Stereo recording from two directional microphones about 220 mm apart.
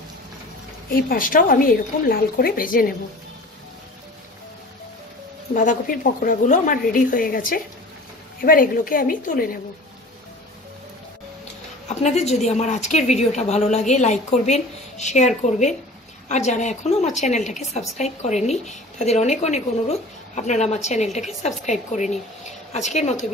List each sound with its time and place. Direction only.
0.9 s a woman's voice: 40° left (ahead or behind)
5.5 s a woman's voice: 35° left (ahead or behind)
11.9 s a woman's voice: 30° left (ahead or behind)